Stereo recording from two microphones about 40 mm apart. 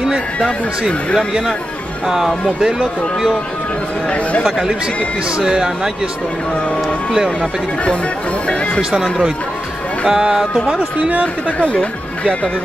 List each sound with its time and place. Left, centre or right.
2.0 s speech: centre
5.4 s speech: centre
10.0 s music: right
11.0 s speech: right
11.6 s speech: left